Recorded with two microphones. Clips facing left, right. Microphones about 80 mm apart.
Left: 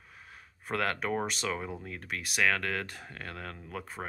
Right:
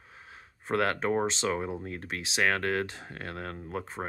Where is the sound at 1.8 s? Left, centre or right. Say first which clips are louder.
Right 2 dB; right.